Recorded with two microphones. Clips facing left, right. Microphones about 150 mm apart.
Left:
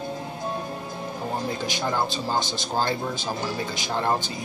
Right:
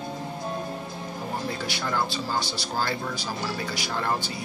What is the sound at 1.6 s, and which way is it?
Speech, 20° left (ahead or behind).